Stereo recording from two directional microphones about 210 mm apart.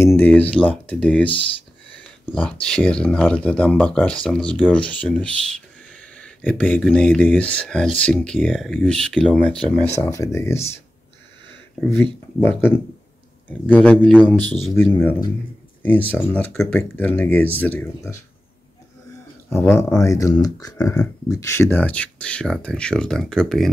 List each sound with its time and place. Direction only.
0.0 s speech: 10° left (ahead or behind)
2.6 s speech: 5° left (ahead or behind)
11.8 s speech: 10° left (ahead or behind)
19.5 s speech: 10° left (ahead or behind)